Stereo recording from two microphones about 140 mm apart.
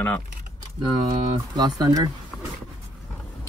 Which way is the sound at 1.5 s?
30° right (ahead or behind).